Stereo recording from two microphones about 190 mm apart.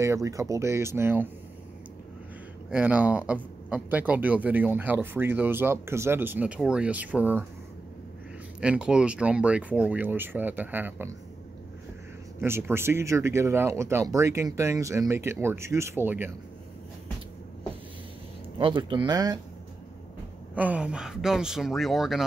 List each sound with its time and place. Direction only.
0.0 s speech: 15° right (ahead or behind)
2.7 s speech: 10° right (ahead or behind)
8.5 s speech: 5° right (ahead or behind)
12.4 s speech: 10° right (ahead or behind)
18.6 s speech: 25° right (ahead or behind)
20.5 s speech: 5° right (ahead or behind)